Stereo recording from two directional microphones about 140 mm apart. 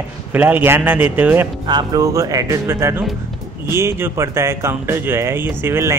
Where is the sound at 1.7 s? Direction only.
30° right (ahead or behind).